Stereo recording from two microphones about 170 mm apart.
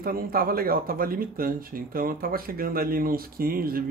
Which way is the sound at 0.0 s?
60° right (ahead or behind).